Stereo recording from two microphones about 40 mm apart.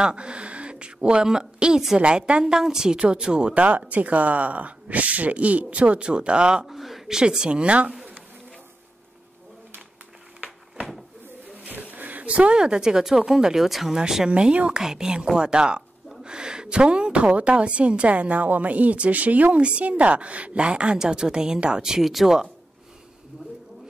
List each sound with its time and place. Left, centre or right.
0.0 s a woman's voice: right
2.4 s a woman's voice: centre
3.9 s a woman's voice: right
6.6 s speech: centre
7.1 s a woman's voice: centre
11.5 s a sound: right
12.5 s speech: centre
14.3 s a woman's voice: right
14.7 s a woman's voice: centre
22.0 s speech: centre